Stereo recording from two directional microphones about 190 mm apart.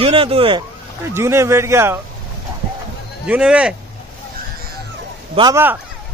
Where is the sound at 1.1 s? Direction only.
15° right (ahead or behind).